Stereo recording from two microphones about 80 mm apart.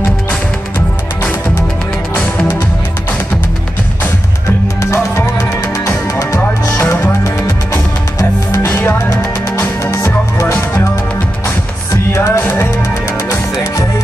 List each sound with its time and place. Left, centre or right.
4.9 s music: left
8.6 s music: left